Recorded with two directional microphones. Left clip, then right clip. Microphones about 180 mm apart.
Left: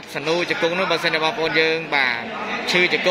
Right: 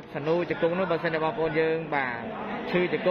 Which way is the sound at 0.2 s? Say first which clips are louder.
Left 5 dB; 15° left (ahead or behind).